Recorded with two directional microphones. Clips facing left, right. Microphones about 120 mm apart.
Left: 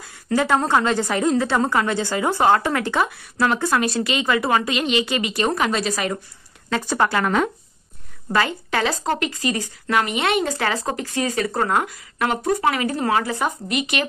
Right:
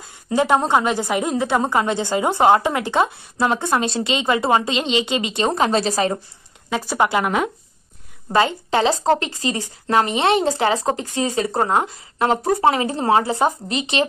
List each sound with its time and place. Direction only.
0.0 s a woman's voice: 20° right (ahead or behind)
6.7 s a woman's voice: 15° right (ahead or behind)